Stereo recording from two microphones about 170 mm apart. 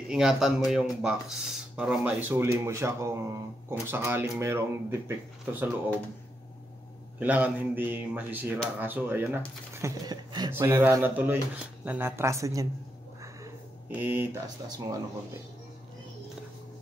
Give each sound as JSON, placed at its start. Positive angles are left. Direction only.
{"t": 0.1, "sound": "speech", "side_deg": -5}
{"t": 7.2, "sound": "speech", "side_deg": -10}
{"t": 9.8, "sound": "a sound", "side_deg": -20}
{"t": 10.5, "sound": "speech", "side_deg": -15}
{"t": 13.9, "sound": "speech", "side_deg": -10}
{"t": 14.7, "sound": "a sound", "side_deg": -20}